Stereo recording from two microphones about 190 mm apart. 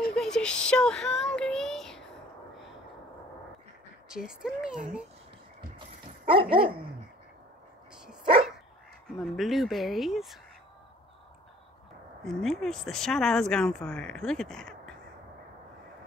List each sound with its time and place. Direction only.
0.1 s child singing: 5° left (ahead or behind)
4.1 s speech: 5° right (ahead or behind)
5.8 s dog: 25° right (ahead or behind)
7.9 s dog: 5° right (ahead or behind)
9.2 s speech: centre (ahead or behind)
12.3 s speech: centre (ahead or behind)